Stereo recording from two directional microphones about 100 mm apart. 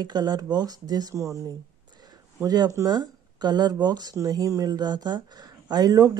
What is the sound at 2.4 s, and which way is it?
Speech, 40° right (ahead or behind).